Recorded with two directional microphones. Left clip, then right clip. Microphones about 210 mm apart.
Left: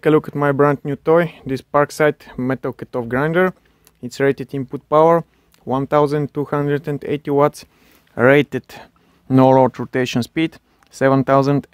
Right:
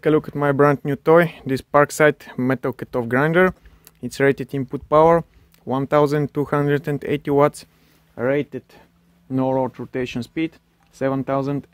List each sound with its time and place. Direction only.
0.0 s speech: 15° left (ahead or behind)
8.1 s speech: 40° left (ahead or behind)